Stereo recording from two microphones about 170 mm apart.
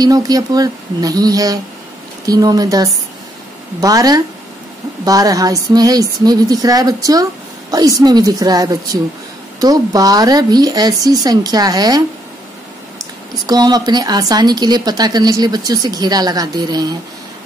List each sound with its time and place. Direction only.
0.0 s speech: 20° right (ahead or behind)
13.5 s speech: 25° right (ahead or behind)